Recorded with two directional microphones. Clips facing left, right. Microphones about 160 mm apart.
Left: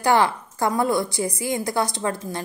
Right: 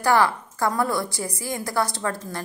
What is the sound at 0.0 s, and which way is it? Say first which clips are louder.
A woman's voice: left 1 dB; 20° left (ahead or behind).